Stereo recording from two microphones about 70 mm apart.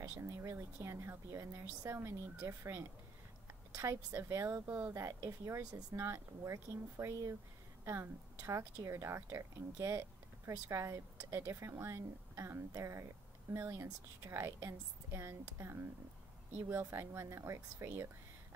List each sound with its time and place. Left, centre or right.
0.2 s a woman's voice: right
3.7 s a woman's voice: right
4.6 s speech: right
4.9 s a woman's voice: right
11.4 s a woman's voice: right
14.7 s a woman's voice: right